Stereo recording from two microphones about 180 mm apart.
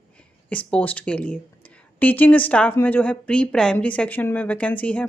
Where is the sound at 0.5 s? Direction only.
5° left (ahead or behind).